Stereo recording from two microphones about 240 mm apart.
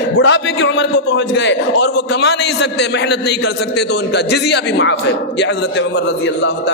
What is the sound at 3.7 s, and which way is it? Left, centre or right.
A man's voice, left.